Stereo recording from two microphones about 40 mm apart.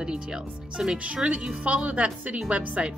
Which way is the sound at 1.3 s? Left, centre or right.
Right.